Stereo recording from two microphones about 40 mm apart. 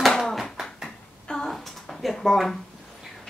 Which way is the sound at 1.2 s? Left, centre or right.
Centre.